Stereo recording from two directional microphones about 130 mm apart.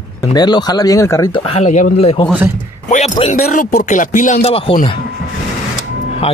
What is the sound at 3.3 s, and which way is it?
Speech, 90° left.